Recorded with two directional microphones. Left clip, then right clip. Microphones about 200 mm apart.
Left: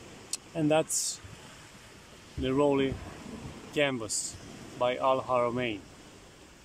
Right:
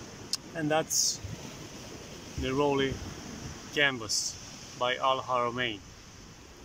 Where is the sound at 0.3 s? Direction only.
15° left (ahead or behind).